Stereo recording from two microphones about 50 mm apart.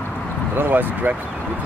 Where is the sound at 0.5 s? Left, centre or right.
Right.